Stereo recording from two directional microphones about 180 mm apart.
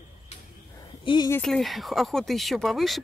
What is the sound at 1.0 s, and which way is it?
Speech, 25° left (ahead or behind).